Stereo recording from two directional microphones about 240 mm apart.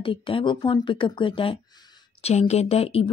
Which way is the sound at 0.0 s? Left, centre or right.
Left.